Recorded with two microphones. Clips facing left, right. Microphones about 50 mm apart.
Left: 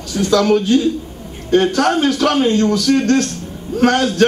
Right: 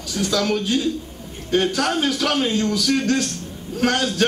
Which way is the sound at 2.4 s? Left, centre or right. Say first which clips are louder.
Left 6 dB; centre.